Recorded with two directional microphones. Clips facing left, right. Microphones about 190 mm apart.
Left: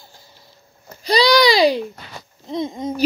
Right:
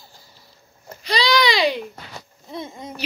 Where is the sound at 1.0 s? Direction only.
40° left (ahead or behind).